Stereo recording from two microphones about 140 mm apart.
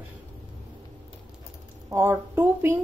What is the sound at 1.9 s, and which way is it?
Speech, 20° right (ahead or behind).